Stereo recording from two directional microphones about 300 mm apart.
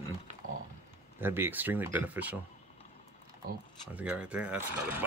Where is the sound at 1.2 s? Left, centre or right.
Centre.